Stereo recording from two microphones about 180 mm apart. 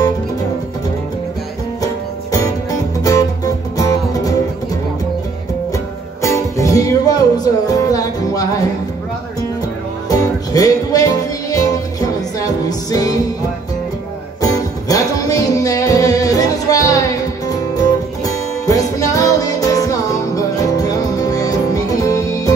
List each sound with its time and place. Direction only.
2.3 s music: 20° left (ahead or behind)
6.2 s music: 15° left (ahead or behind)
10.0 s music: 20° left (ahead or behind)
14.4 s music: 20° left (ahead or behind)